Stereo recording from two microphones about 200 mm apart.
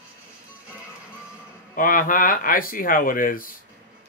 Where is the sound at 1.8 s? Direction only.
45° left (ahead or behind).